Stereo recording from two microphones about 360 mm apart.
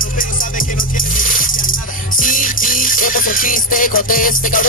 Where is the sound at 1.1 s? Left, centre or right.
Left.